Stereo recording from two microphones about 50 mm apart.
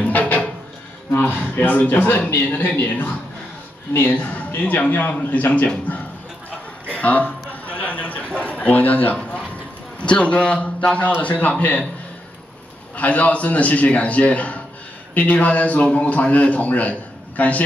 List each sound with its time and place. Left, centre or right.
0.1 s music: left
1.4 s a man's voice: left
7.0 s a sound: left
8.4 s a man's voice: left
9.9 s a man's voice: left
12.9 s a man's voice: left